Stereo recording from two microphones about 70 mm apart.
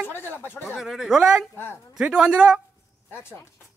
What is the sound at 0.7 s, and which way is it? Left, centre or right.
Speech, centre.